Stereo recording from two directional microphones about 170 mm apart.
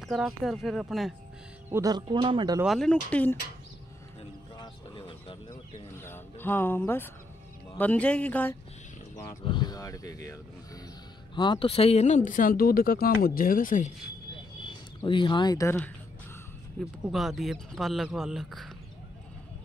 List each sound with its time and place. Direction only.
0.0 s speech: centre (ahead or behind)
1.7 s speech: 20° right (ahead or behind)
2.6 s speech: centre (ahead or behind)
4.6 s a sound: 30° left (ahead or behind)
5.9 s a sound: 15° left (ahead or behind)
7.7 s speech: 10° left (ahead or behind)
9.4 s speech: 25° left (ahead or behind)
11.3 s speech: 25° left (ahead or behind)
12.3 s speech: 55° left (ahead or behind)
15.0 s speech: 30° left (ahead or behind)
16.8 s speech: 5° left (ahead or behind)